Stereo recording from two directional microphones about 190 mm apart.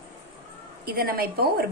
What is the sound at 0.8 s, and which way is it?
Speech, 50° right (ahead or behind).